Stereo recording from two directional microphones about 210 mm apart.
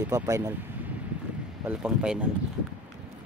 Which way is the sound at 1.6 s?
5° right (ahead or behind).